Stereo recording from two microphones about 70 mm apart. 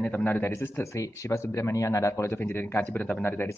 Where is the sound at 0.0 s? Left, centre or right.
Left.